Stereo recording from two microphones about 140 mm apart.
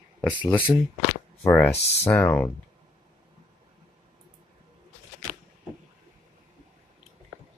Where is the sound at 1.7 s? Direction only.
45° left (ahead or behind).